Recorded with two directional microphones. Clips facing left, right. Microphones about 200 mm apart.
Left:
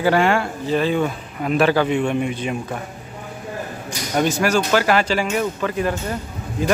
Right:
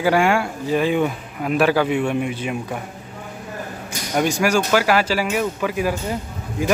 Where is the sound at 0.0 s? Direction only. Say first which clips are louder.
Even; 10° right (ahead or behind).